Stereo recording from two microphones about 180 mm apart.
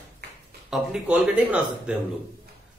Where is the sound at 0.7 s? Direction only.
5° right (ahead or behind).